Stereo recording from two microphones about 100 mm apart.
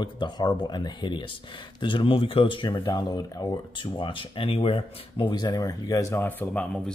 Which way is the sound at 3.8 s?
55° left (ahead or behind).